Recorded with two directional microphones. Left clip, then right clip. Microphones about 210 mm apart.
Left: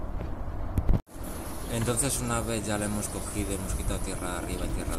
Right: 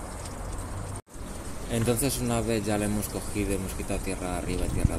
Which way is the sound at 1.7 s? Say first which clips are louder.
Right 3 dB; 15° right (ahead or behind).